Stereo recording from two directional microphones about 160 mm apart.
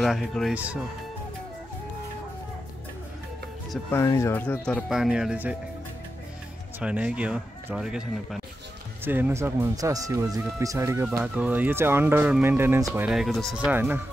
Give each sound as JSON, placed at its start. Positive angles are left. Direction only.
{"t": 0.0, "sound": "speech", "side_deg": 0}
{"t": 3.9, "sound": "speech", "side_deg": 15}
{"t": 4.8, "sound": "speech", "side_deg": 0}
{"t": 6.8, "sound": "speech", "side_deg": -5}
{"t": 13.7, "sound": "speech", "side_deg": -10}